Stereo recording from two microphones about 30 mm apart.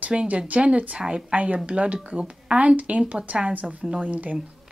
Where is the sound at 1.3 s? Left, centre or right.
Right.